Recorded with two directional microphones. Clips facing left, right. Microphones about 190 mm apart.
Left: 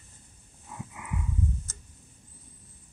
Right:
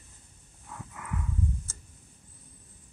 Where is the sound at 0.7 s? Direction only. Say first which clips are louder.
Left 1 dB; 10° left (ahead or behind).